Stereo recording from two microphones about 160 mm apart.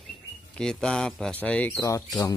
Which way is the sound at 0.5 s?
5° left (ahead or behind).